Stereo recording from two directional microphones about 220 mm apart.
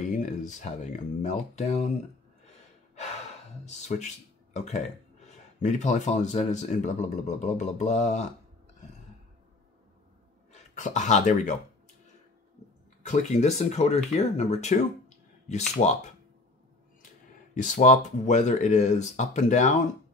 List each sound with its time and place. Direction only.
0.1 s speech: 35° left (ahead or behind)
3.6 s speech: 30° left (ahead or behind)
10.5 s speech: 35° left (ahead or behind)
13.0 s speech: 30° left (ahead or behind)
17.6 s speech: 35° left (ahead or behind)